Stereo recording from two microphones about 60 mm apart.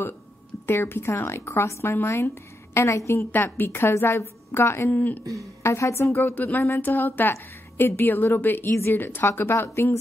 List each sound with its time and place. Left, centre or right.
0.7 s speech: left
3.3 s a woman's voice: left
3.6 s speech: left
4.9 s speech: left
5.6 s speech: left
6.3 s a woman's voice: left